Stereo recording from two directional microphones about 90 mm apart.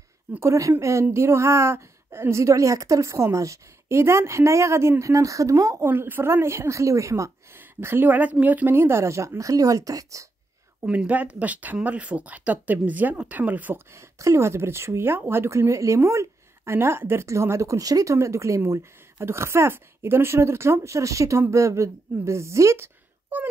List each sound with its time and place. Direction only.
0.4 s speech: 35° right (ahead or behind)
5.9 s speech: 25° right (ahead or behind)
7.5 s speech: 25° right (ahead or behind)
10.8 s speech: 15° right (ahead or behind)
13.9 s speech: 35° right (ahead or behind)